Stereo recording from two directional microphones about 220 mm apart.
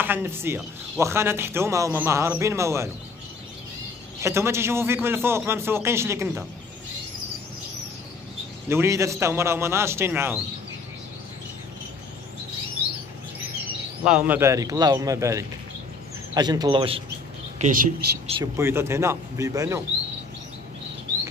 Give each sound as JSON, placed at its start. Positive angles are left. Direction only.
{"t": 0.0, "sound": "a man's voice", "side_deg": -10}
{"t": 4.2, "sound": "a man's voice", "side_deg": -10}
{"t": 8.6, "sound": "a man's voice", "side_deg": -10}
{"t": 14.0, "sound": "a man's voice", "side_deg": -5}
{"t": 18.4, "sound": "a man's voice", "side_deg": -10}